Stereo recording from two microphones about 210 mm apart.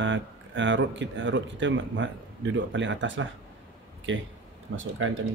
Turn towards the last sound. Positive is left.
turn(degrees=-70)  # may be behind; listen again after turning